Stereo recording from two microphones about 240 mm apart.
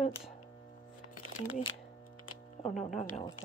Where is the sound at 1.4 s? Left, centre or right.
Left.